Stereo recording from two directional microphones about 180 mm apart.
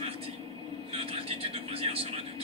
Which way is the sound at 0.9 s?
30° right (ahead or behind).